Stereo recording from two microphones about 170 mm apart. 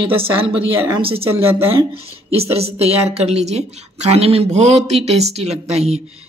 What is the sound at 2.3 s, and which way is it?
A woman's voice, 35° right (ahead or behind).